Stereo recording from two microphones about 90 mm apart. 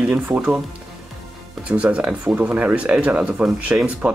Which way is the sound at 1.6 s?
15° right (ahead or behind).